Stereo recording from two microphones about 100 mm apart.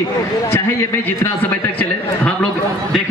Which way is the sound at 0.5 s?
20° left (ahead or behind).